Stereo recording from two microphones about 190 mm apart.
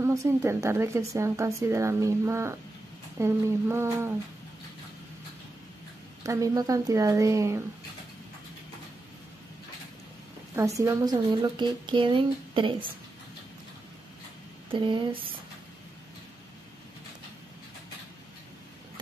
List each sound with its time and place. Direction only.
0.0 s speech: 15° right (ahead or behind)
6.2 s speech: 15° right (ahead or behind)
10.5 s a woman's voice: 15° right (ahead or behind)
14.7 s a woman's voice: 25° right (ahead or behind)